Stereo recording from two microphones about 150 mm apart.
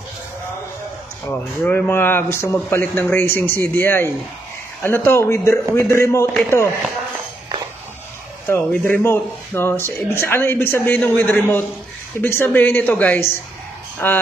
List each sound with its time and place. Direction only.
1.2 s speech: 10° left (ahead or behind)
8.5 s speech: 15° left (ahead or behind)